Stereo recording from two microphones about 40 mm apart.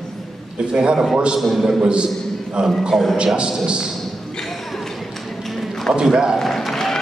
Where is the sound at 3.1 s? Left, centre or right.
Right.